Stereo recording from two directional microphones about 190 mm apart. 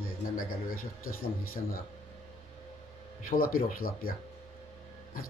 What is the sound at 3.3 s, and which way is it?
Speech, 50° left (ahead or behind).